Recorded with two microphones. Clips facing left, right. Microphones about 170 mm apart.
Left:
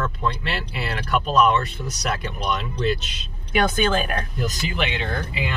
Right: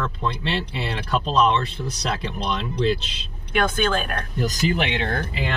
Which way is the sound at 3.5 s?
10° left (ahead or behind).